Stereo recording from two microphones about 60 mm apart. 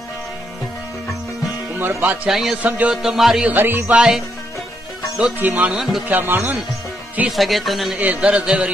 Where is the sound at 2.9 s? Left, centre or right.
Centre.